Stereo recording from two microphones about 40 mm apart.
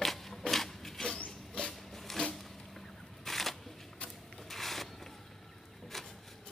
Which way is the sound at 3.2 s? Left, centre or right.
Centre.